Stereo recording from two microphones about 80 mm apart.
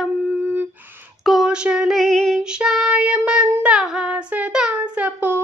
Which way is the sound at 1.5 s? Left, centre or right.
Centre.